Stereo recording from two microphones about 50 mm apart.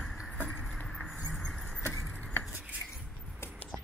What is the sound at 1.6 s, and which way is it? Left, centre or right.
Vehicle, centre.